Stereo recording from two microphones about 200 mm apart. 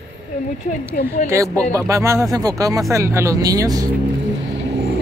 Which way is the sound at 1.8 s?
15° right (ahead or behind).